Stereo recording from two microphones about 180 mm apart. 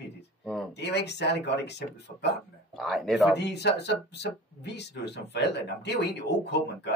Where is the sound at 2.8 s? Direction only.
Centre (ahead or behind).